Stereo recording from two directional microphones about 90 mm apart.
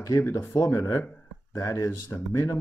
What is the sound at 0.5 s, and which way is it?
Speech, 40° left (ahead or behind).